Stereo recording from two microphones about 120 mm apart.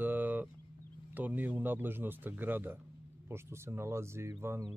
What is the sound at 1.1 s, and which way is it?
A man's voice, 15° right (ahead or behind).